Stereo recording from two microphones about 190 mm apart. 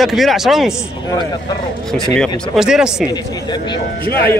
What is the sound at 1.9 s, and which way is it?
Speech, 5° left (ahead or behind).